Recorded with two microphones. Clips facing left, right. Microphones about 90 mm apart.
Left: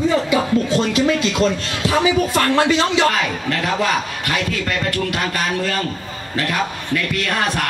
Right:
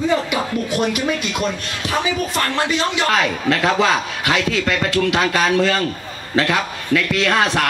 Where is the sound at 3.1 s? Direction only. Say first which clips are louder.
Right 3 dB; 90° right.